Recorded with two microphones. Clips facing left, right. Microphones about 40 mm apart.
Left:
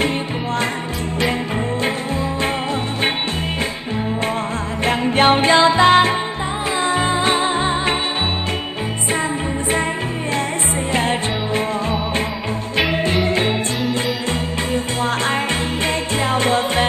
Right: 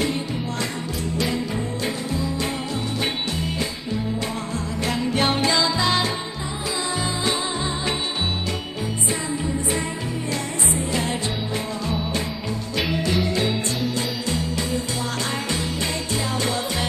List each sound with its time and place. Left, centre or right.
4.8 s music: left
10.9 s music: left
16.3 s music: left